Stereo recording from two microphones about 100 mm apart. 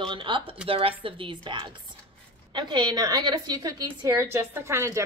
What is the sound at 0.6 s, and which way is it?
Speech, 70° right (ahead or behind).